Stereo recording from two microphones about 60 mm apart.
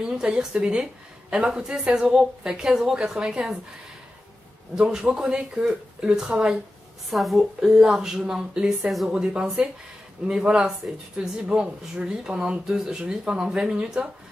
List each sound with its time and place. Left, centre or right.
0.0 s speech: centre
4.7 s speech: centre
7.1 s a woman's voice: centre
7.6 s speech: centre
9.1 s speech: centre